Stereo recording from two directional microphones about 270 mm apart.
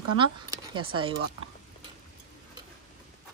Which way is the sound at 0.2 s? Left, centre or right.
Centre.